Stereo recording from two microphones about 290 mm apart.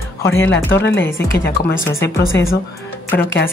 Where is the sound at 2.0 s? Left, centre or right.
Left.